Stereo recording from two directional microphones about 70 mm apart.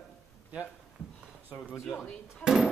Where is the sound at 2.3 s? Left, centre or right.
Centre.